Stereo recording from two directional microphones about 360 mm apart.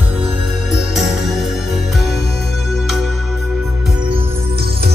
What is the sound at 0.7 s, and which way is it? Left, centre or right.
Music, centre.